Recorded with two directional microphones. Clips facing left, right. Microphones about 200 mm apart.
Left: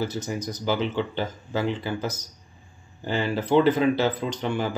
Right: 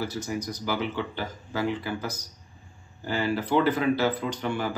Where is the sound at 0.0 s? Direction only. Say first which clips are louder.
Left 2 dB; 20° left (ahead or behind).